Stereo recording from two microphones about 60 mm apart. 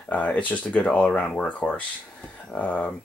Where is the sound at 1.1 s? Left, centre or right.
Centre.